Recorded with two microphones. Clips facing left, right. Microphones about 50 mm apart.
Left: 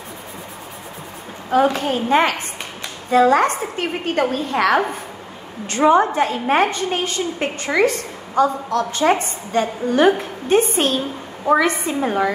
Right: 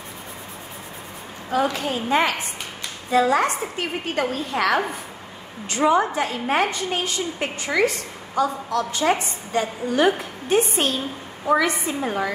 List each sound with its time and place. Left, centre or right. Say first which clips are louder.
1.5 s a woman's voice: left 6 dB; left